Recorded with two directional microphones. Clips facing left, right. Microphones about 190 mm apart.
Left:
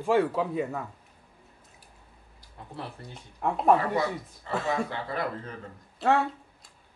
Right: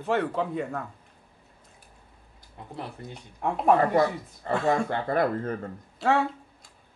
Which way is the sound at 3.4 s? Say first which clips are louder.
Even; centre (ahead or behind).